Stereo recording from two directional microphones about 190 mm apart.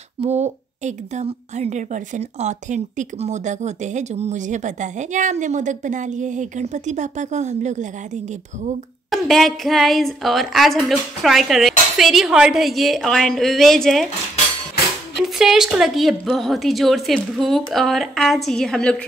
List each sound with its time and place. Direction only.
0.2 s a woman's voice: 35° right (ahead or behind)
9.1 s speech: centre (ahead or behind)
15.2 s speech: centre (ahead or behind)